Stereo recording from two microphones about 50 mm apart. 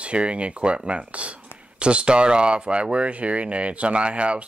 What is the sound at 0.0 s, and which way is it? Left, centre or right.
Speech, right.